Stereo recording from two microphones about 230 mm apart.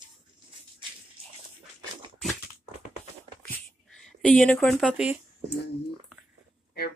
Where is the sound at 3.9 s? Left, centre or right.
Centre.